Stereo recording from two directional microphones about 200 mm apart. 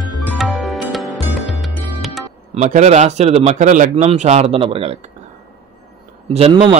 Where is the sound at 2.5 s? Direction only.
35° right (ahead or behind).